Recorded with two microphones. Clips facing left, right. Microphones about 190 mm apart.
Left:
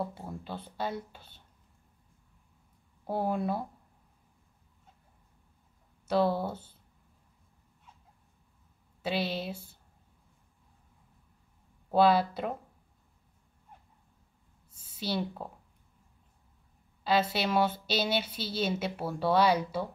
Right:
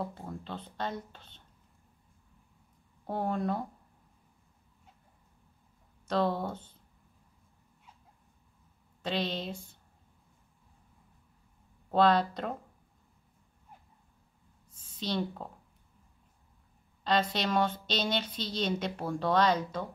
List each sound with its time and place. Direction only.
0.0 s a woman's voice: 10° left (ahead or behind)
3.1 s a woman's voice: 5° left (ahead or behind)
6.0 s a woman's voice: 5° left (ahead or behind)
9.0 s a woman's voice: 10° left (ahead or behind)
11.9 s a woman's voice: 10° left (ahead or behind)
14.7 s a sound: 10° left (ahead or behind)
17.0 s a woman's voice: 5° left (ahead or behind)